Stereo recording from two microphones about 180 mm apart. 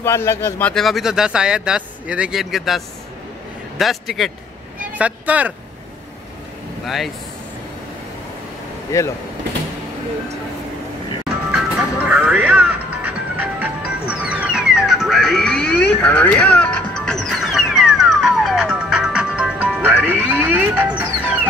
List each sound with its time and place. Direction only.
0.0 s speech: 15° left (ahead or behind)
0.7 s speech: centre (ahead or behind)
8.9 s speech: 15° left (ahead or behind)
11.5 s music: 5° right (ahead or behind)